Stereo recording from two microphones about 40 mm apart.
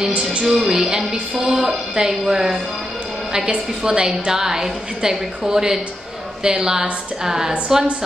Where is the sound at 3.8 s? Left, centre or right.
Right.